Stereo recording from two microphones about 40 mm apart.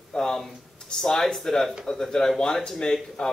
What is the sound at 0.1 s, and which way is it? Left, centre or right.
Speech, centre.